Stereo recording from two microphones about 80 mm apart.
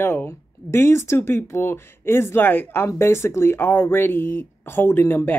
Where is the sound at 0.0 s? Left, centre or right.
Left.